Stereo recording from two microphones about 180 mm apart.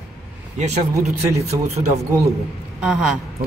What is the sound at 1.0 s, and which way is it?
Speech, 40° right (ahead or behind).